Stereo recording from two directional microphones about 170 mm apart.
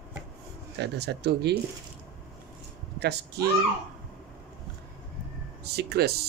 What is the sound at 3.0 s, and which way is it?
Speech, 75° right (ahead or behind).